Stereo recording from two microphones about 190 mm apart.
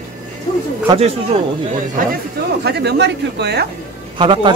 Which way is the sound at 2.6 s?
60° right (ahead or behind).